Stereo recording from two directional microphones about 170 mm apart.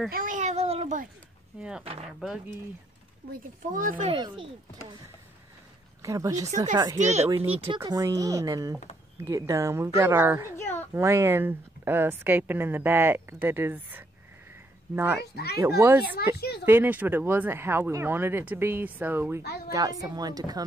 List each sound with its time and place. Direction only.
0.1 s a sound: 50° right (ahead or behind)
1.6 s speech: 5° right (ahead or behind)
3.7 s speech: 55° right (ahead or behind)
4.1 s speech: 30° right (ahead or behind)
6.0 s speech: 20° right (ahead or behind)
7.0 s speech: 40° right (ahead or behind)
7.8 s a woman's voice: 20° right (ahead or behind)
10.6 s a sound: 15° left (ahead or behind)
11.0 s a woman's voice: 15° right (ahead or behind)
16.0 s speech: 70° left (ahead or behind)
16.6 s a woman's voice: 10° right (ahead or behind)